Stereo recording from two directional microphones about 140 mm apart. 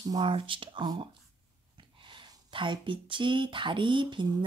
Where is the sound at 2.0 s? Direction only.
35° right (ahead or behind).